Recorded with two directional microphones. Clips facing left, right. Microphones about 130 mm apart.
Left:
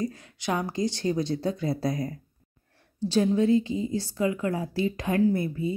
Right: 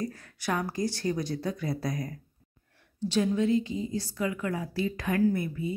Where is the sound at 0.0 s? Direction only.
20° left (ahead or behind).